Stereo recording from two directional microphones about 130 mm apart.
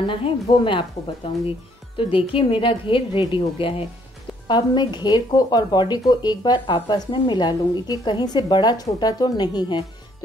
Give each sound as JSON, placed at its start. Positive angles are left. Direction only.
{"t": 0.0, "sound": "a woman's voice", "side_deg": 40}